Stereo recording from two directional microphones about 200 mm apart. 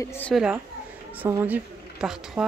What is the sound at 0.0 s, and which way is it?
Speech, 10° left (ahead or behind).